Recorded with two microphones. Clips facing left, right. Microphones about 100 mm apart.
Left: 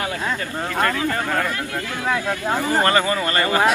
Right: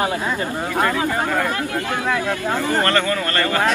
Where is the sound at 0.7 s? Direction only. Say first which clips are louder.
Right 1 dB; 15° right (ahead or behind).